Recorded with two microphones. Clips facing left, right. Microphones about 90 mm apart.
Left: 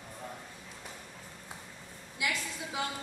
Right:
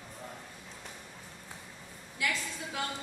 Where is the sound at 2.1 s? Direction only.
20° left (ahead or behind).